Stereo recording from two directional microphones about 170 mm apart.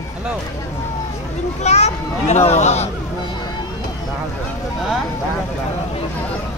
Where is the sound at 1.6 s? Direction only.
40° left (ahead or behind).